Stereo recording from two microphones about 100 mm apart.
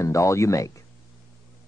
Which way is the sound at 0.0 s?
30° left (ahead or behind).